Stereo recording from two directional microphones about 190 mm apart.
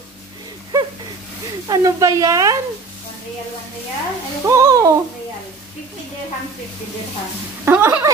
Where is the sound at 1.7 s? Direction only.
15° right (ahead or behind).